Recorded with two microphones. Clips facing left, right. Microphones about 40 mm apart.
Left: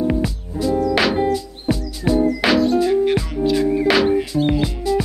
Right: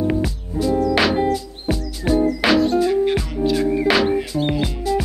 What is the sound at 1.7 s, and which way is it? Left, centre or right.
Music, right.